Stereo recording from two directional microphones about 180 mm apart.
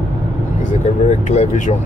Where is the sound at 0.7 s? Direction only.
40° left (ahead or behind).